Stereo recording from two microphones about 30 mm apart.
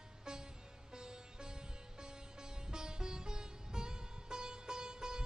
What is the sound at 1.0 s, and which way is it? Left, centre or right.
Music, right.